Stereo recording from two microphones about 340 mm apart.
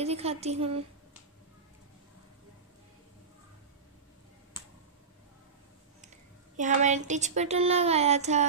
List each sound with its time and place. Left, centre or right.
0.0 s speech: centre
6.5 s speech: right